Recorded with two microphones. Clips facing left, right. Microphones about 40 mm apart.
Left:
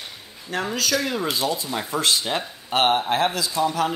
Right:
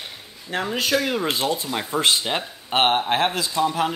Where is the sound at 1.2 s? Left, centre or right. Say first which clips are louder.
Right 1 dB; right.